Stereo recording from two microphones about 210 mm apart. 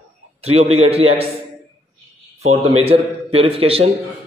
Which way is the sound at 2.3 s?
30° right (ahead or behind).